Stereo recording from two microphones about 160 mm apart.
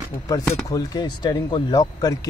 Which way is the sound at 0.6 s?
25° left (ahead or behind).